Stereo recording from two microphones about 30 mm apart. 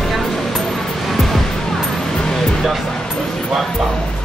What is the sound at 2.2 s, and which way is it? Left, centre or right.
Music, centre.